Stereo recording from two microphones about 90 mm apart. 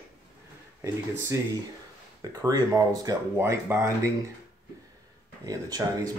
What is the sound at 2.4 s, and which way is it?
Speech, 45° right (ahead or behind).